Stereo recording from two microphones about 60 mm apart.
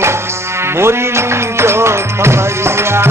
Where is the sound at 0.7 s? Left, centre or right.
Right.